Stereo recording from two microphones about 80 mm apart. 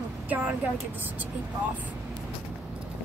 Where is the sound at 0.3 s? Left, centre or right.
Centre.